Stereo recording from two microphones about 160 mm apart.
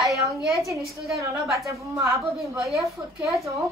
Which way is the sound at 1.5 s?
20° right (ahead or behind).